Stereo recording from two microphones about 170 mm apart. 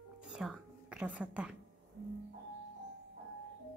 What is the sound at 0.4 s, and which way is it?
A woman's voice, 5° right (ahead or behind).